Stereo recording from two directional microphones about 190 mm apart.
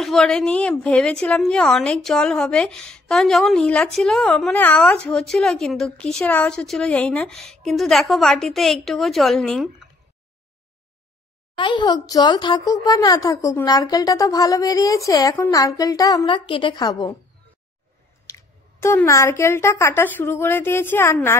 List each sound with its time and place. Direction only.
0.0 s a woman's voice: centre (ahead or behind)
11.5 s speech: 25° left (ahead or behind)
18.3 s speech: 15° left (ahead or behind)